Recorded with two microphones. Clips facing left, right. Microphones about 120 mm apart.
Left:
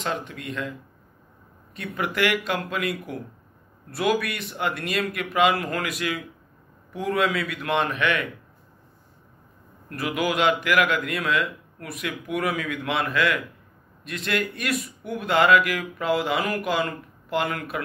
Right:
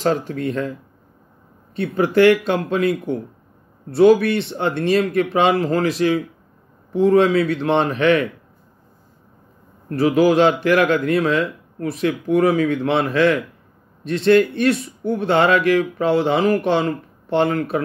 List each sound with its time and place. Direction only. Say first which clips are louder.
0.0 s speech: right 10 dB; 35° right (ahead or behind)
1.8 s speech: right 11 dB; 30° right (ahead or behind)
9.8 s speech: right 11 dB; 35° right (ahead or behind)